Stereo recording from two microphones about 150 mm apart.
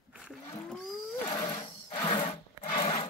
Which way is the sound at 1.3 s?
25° left (ahead or behind).